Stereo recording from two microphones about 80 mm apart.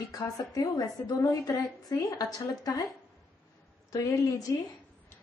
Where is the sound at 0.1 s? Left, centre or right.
Left.